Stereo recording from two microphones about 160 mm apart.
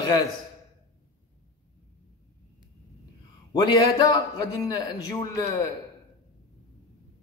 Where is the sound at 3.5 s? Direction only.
25° left (ahead or behind).